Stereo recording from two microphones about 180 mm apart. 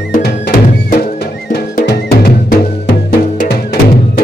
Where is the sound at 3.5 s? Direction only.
60° left (ahead or behind).